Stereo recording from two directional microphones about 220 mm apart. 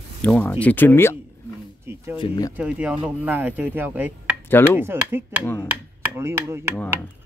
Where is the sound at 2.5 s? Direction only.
5° right (ahead or behind).